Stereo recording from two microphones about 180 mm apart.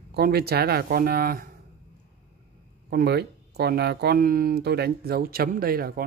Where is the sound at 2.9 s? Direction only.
65° right (ahead or behind).